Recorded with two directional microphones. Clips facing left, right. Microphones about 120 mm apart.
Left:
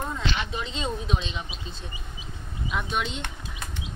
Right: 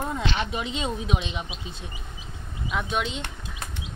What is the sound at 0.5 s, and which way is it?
Speech, 10° right (ahead or behind).